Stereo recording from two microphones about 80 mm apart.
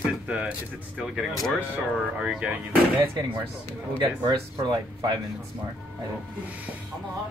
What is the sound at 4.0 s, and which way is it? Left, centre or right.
Speech, right.